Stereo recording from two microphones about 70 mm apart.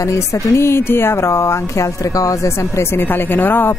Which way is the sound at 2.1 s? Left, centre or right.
Left.